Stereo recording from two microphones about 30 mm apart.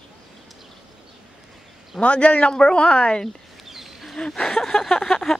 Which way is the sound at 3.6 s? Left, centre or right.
Centre.